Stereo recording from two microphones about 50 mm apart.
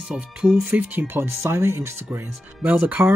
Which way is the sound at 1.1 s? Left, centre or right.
Right.